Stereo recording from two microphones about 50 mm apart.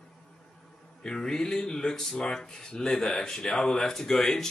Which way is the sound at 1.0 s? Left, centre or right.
Centre.